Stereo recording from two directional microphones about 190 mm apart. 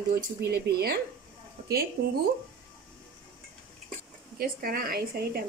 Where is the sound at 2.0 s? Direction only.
55° right (ahead or behind).